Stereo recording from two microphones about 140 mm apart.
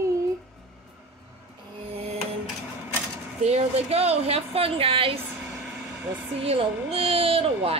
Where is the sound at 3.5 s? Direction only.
50° right (ahead or behind).